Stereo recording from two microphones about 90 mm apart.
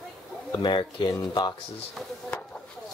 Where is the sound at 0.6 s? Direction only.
65° left (ahead or behind).